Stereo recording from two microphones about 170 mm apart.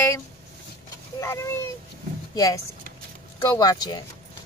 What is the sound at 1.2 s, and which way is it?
Speech, 15° left (ahead or behind).